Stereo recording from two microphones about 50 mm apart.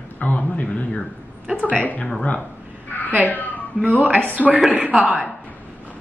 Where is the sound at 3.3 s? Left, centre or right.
Left.